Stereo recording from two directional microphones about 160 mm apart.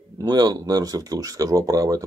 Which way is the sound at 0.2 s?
25° right (ahead or behind).